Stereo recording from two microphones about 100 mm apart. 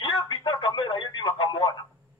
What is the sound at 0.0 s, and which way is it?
Radio, 55° left (ahead or behind).